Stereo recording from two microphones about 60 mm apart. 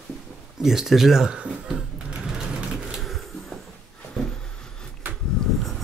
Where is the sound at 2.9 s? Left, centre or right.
Centre.